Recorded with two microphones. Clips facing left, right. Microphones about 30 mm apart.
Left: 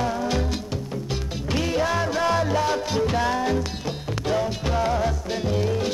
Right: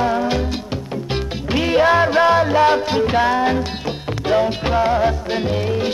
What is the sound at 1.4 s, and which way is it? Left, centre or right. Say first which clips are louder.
Music: right 9 dB; right.